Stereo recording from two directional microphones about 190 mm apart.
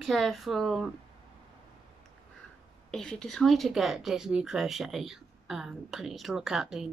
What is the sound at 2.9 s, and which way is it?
Speech, 5° left (ahead or behind).